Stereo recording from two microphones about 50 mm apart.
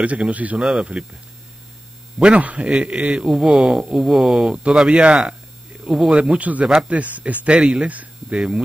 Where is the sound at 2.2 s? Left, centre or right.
Right.